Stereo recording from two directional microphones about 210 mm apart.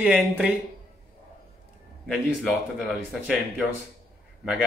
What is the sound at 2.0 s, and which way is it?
Speech, centre (ahead or behind).